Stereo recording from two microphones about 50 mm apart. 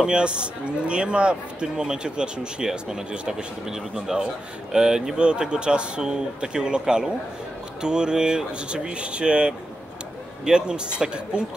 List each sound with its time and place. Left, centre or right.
0.0 s speech: centre